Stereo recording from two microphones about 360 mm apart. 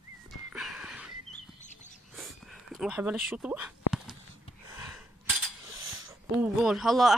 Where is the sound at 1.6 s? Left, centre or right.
Centre.